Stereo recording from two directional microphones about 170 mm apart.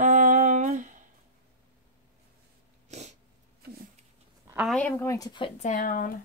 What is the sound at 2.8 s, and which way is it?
Snort, 40° right (ahead or behind).